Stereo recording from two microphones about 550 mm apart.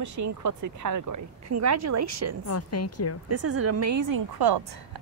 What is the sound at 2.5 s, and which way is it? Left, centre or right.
Speech, left.